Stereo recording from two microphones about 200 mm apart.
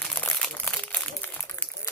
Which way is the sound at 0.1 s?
5° left (ahead or behind).